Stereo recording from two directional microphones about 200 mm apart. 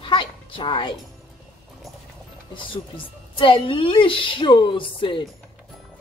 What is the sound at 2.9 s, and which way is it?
A woman's voice, 25° left (ahead or behind).